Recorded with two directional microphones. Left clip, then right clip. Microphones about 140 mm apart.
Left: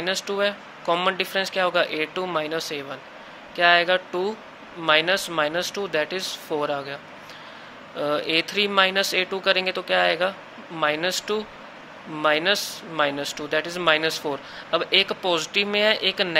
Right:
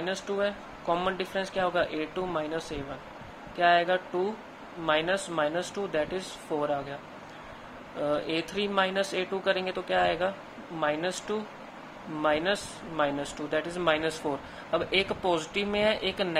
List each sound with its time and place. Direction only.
0.0 s speech: 15° left (ahead or behind)